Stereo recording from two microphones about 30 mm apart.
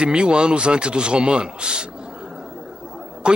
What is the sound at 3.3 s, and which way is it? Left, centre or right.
Speech, right.